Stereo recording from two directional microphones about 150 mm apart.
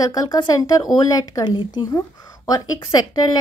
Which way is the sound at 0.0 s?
25° left (ahead or behind).